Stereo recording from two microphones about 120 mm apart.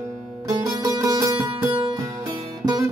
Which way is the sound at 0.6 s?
30° right (ahead or behind).